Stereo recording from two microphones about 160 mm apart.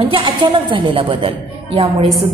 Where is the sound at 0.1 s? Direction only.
30° right (ahead or behind).